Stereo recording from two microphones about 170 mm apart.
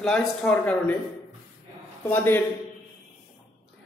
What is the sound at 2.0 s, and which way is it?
Speech, 10° left (ahead or behind).